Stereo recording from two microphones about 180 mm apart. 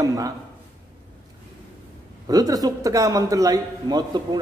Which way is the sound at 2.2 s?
20° right (ahead or behind).